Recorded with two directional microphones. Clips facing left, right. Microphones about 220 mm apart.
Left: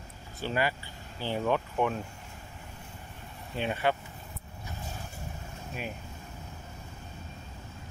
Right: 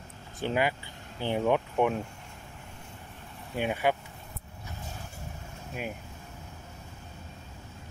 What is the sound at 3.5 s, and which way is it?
Speech, 10° right (ahead or behind).